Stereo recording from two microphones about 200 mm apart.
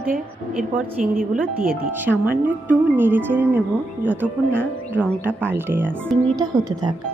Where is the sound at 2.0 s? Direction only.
10° right (ahead or behind).